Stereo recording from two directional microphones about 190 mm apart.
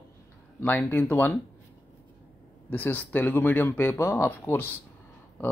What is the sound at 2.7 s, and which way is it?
Speech, 10° left (ahead or behind).